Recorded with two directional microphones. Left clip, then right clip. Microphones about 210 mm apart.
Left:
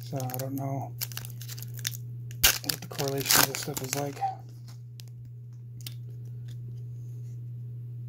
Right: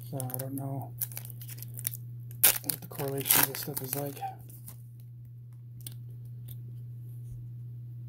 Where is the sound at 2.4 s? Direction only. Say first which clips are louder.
Left 6 dB; centre (ahead or behind).